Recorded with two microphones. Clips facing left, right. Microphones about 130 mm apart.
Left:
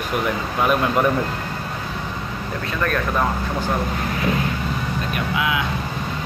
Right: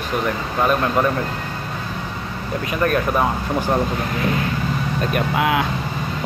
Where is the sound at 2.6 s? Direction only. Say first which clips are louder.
Right 4 dB; 15° right (ahead or behind).